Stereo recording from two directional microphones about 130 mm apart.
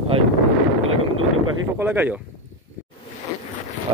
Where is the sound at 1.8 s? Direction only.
15° right (ahead or behind).